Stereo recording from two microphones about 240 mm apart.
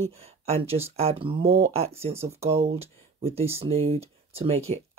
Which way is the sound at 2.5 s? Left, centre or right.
Right.